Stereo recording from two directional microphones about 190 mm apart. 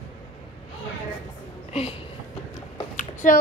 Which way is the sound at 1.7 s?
35° left (ahead or behind).